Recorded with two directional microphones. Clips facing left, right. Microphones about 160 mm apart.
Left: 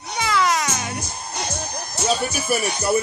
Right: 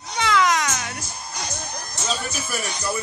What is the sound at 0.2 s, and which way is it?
Music, 5° left (ahead or behind).